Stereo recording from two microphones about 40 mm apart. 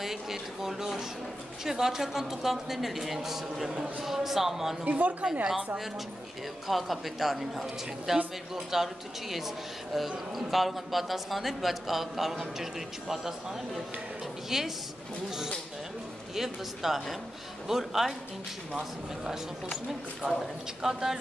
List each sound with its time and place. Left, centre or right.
0.0 s a man's voice: centre
4.8 s a woman's voice: right
6.7 s a man's voice: centre
14.5 s a man's voice: centre
16.3 s a man's voice: centre